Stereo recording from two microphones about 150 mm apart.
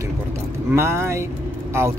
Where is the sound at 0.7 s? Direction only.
15° right (ahead or behind).